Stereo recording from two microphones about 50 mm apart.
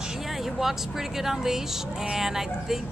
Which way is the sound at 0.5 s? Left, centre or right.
Centre.